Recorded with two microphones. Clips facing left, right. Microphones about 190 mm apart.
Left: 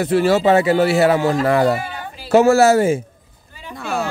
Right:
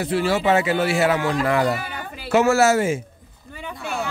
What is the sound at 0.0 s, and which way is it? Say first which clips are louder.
Speech: left 6 dB; 50° left (ahead or behind).